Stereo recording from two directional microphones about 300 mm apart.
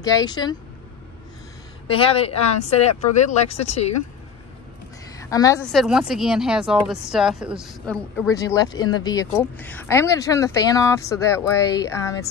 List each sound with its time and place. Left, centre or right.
0.0 s speech: centre
1.9 s speech: centre
5.2 s speech: centre